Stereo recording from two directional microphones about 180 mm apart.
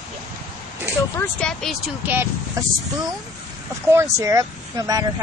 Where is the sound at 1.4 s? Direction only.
Centre (ahead or behind).